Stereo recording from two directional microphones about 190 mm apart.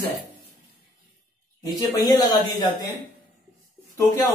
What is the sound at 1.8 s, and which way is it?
Speech, 20° left (ahead or behind).